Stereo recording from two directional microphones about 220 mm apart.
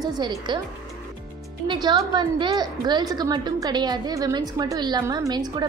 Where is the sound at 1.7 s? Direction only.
20° right (ahead or behind).